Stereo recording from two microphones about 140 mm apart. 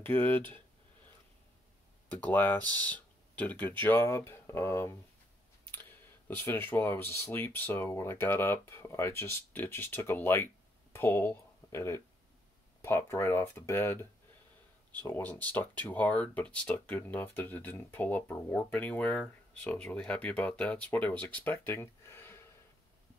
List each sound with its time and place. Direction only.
0.0 s speech: 15° left (ahead or behind)
2.0 s speech: 10° left (ahead or behind)
15.0 s speech: 15° left (ahead or behind)